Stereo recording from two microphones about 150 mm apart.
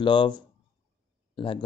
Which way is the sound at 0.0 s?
30° left (ahead or behind).